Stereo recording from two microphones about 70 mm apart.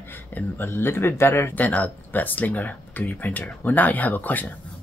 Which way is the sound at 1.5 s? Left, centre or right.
Left.